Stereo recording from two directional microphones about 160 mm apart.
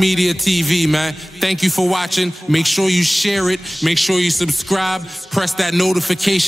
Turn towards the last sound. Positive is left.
turn(degrees=0)  # may be behind; listen again after turning